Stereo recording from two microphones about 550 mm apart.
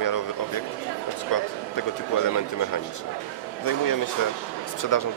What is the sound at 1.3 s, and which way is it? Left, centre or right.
Speech, left.